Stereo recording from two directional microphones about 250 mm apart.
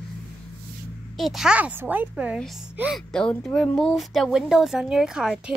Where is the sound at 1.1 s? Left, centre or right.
Centre.